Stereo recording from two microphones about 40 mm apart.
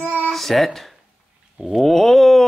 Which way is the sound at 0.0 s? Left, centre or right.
Right.